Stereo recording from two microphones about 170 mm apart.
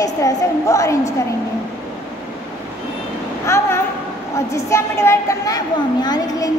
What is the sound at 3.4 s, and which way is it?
A woman's voice, 15° left (ahead or behind).